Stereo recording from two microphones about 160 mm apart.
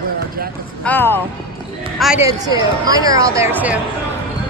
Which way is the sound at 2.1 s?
20° right (ahead or behind).